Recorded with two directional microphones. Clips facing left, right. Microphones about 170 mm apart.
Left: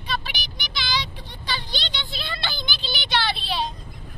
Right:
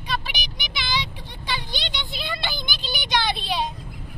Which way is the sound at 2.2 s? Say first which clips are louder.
Right 2 dB; 15° right (ahead or behind).